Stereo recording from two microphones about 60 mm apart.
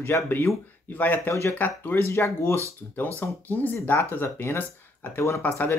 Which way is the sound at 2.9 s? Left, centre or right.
Left.